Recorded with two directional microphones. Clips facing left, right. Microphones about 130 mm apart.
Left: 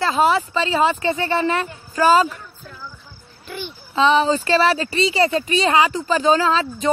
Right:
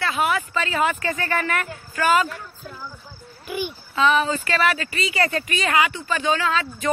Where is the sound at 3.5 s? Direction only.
10° right (ahead or behind).